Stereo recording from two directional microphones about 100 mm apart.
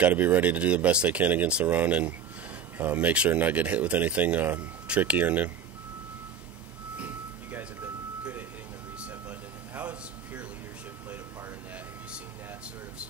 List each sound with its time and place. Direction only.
0.0 s speech: 20° right (ahead or behind)
7.0 s music: 20° right (ahead or behind)
9.8 s a sound: 15° right (ahead or behind)